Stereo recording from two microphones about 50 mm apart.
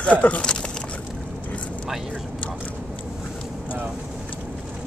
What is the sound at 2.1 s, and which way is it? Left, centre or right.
Speech, left.